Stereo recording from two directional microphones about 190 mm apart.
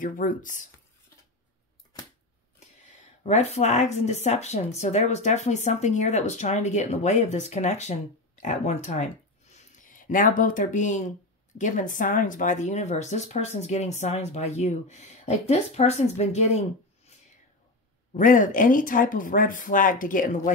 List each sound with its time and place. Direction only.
0.0 s speech: 45° left (ahead or behind)
3.3 s speech: 35° left (ahead or behind)
18.1 s speech: 45° left (ahead or behind)